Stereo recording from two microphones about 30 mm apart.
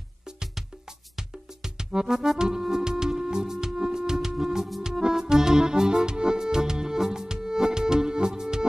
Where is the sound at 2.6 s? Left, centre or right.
Right.